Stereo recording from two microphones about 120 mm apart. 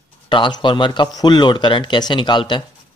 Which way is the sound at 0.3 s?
40° left (ahead or behind).